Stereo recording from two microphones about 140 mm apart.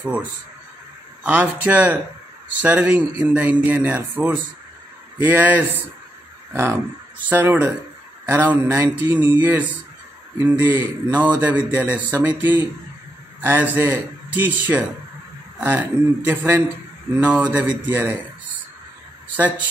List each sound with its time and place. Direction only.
0.0 s speech: 10° right (ahead or behind)